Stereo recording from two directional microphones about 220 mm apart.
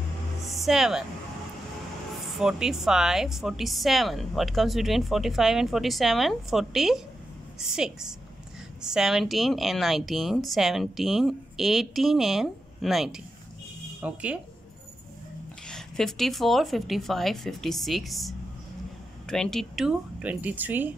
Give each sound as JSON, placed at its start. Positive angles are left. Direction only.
{"t": 0.7, "sound": "a woman's voice", "side_deg": 0}
{"t": 2.3, "sound": "a woman's voice", "side_deg": 0}
{"t": 15.7, "sound": "a woman's voice", "side_deg": 0}